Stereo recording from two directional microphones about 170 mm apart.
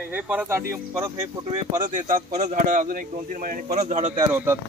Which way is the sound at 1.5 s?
45° right (ahead or behind).